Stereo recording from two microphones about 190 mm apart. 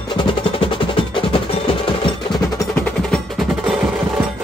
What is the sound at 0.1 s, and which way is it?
Music, 25° left (ahead or behind).